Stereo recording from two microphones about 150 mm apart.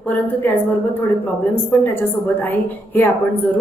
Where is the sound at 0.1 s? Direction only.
10° left (ahead or behind).